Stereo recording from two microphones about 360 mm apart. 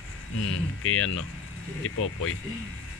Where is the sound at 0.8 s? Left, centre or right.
Left.